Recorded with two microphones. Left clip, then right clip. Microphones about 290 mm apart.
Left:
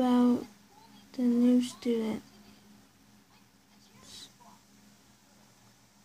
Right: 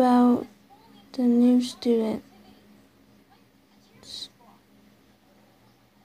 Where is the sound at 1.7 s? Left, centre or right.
Centre.